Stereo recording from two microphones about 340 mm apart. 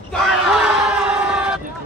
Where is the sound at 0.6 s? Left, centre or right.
Centre.